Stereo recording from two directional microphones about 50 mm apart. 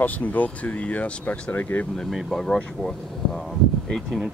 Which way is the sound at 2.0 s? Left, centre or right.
Centre.